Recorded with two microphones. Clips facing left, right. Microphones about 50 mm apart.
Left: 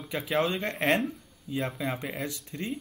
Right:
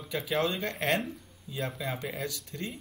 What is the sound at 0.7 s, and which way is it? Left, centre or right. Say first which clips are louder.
Speech: left 3 dB; left.